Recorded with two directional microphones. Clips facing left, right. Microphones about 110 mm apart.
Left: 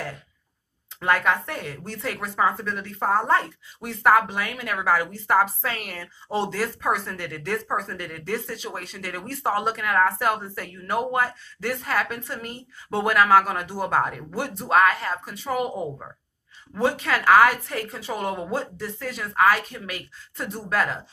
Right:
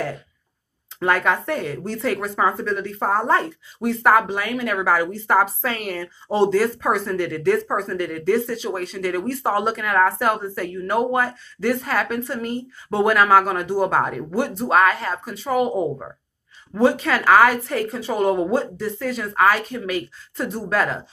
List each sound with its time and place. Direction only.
0.9 s speech: 40° right (ahead or behind)